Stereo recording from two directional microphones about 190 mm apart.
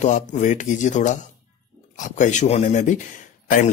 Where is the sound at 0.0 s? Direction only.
40° left (ahead or behind).